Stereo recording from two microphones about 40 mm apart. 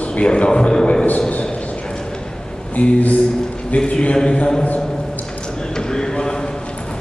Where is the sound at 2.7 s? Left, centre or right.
Left.